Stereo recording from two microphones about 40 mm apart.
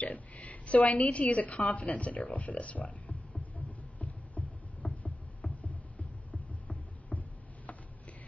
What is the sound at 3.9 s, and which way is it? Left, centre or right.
Boat, left.